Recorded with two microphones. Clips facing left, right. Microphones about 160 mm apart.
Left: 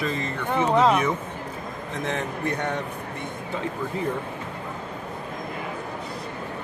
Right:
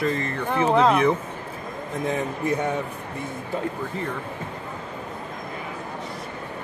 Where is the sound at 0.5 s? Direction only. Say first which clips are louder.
Right 1 dB; centre (ahead or behind).